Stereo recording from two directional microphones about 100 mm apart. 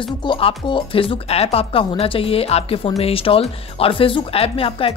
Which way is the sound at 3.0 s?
70° left (ahead or behind).